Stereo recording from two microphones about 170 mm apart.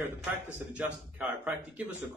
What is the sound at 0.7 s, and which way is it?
Speech, 10° right (ahead or behind).